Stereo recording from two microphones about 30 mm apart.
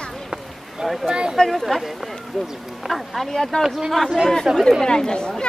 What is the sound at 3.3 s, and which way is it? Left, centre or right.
Speech, centre.